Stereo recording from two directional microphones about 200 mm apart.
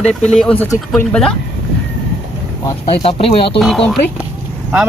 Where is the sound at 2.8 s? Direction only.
30° left (ahead or behind).